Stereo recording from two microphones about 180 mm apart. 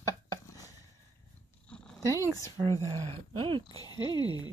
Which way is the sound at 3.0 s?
30° right (ahead or behind).